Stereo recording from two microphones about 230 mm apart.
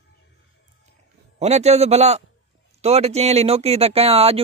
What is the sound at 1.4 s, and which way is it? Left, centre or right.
Speech, right.